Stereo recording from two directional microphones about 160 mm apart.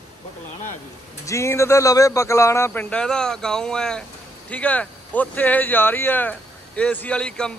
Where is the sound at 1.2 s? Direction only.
20° left (ahead or behind).